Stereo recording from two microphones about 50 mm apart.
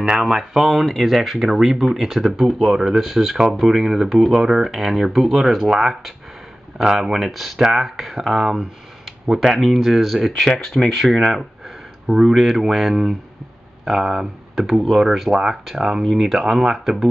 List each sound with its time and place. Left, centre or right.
0.0 s speech: centre
10.5 s speech: centre
11.0 s speech: centre
16.0 s speech: centre